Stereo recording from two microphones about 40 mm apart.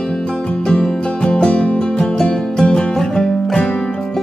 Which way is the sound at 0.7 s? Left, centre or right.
Left.